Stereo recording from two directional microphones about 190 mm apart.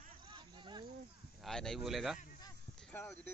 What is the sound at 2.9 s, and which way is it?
Speech, 10° left (ahead or behind).